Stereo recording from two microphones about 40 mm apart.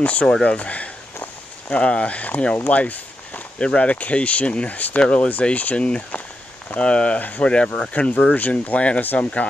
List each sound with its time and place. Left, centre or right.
0.0 s speech: left
5.0 s speech: left
5.4 s speech: left
7.2 s speech: left
7.4 s speech: left
9.0 s speech: left